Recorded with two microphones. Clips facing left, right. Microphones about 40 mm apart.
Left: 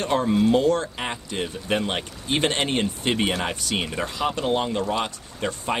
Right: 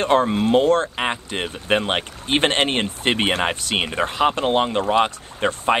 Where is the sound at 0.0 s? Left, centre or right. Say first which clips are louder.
Right 3 dB; right.